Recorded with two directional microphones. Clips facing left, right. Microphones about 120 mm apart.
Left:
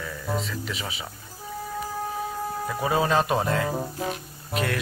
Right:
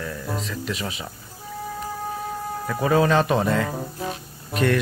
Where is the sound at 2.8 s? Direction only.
5° left (ahead or behind).